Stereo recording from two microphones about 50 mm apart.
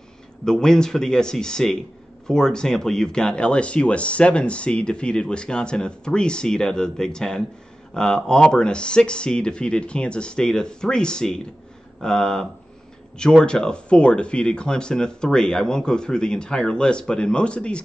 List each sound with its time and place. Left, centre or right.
0.5 s speech: centre
13.5 s speech: centre